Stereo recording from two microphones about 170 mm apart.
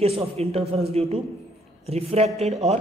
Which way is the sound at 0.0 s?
35° right (ahead or behind).